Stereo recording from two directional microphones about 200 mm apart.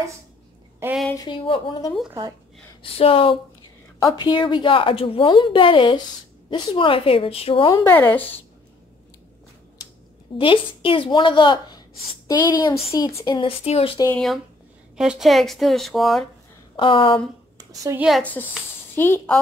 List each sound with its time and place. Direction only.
0.8 s speech: 10° right (ahead or behind)
1.1 s a woman's voice: 25° left (ahead or behind)
7.8 s speech: 10° left (ahead or behind)
10.3 s a woman's voice: 25° left (ahead or behind)
14.0 s speech: 5° left (ahead or behind)
16.7 s a woman's voice: 25° left (ahead or behind)
17.6 s a sound: 15° right (ahead or behind)
18.0 s speech: 5° left (ahead or behind)